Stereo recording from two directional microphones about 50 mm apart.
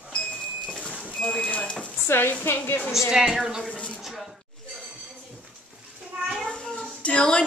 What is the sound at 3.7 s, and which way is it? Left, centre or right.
Speech, left.